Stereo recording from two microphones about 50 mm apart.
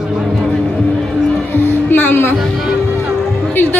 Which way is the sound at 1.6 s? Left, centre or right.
Left.